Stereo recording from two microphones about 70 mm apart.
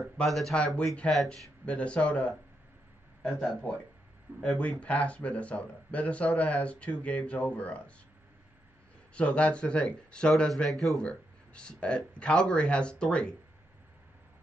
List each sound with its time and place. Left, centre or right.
0.2 s speech: centre
1.0 s speech: centre
9.1 s speech: centre